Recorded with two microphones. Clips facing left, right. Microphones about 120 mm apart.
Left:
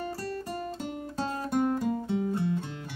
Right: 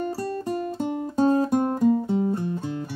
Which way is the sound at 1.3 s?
40° right (ahead or behind).